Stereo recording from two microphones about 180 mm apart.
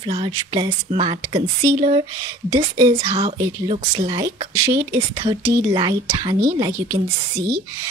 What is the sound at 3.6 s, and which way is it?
Speech, 35° right (ahead or behind).